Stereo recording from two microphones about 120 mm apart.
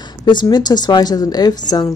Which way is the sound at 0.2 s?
35° left (ahead or behind).